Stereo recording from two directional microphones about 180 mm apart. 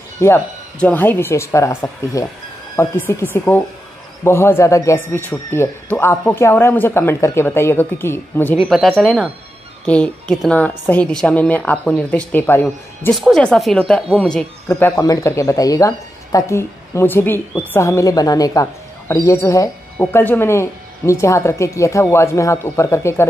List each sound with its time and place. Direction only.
0.2 s speech: 10° left (ahead or behind)
8.6 s speech: centre (ahead or behind)
13.1 s speech: centre (ahead or behind)
14.7 s speech: 15° left (ahead or behind)